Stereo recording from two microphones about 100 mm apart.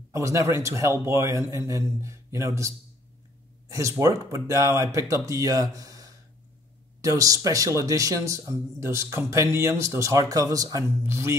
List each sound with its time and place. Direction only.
0.1 s a man's voice: 30° right (ahead or behind)